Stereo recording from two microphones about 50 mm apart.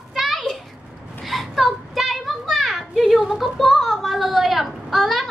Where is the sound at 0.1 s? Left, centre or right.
Centre.